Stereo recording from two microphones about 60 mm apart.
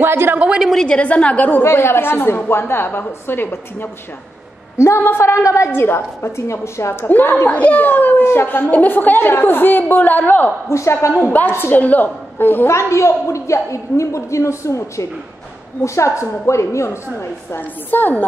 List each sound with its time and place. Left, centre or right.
0.0 s a woman's voice: right
0.4 s a sound: centre
0.7 s a woman's voice: centre
1.6 s a woman's voice: left
5.7 s speech: left
7.1 s a woman's voice: left
10.7 s speech: left
11.2 s a woman's voice: left
11.5 s a woman's voice: left
11.8 s a woman's voice: left
12.6 s a woman's voice: left
17.6 s a woman's voice: left